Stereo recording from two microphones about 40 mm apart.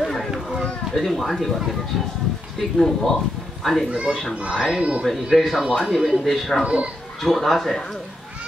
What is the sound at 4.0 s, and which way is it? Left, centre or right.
Speech, right.